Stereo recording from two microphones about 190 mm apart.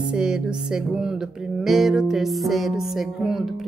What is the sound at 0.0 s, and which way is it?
Music, 5° right (ahead or behind).